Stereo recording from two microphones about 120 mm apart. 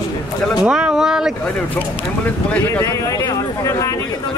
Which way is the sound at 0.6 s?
5° right (ahead or behind).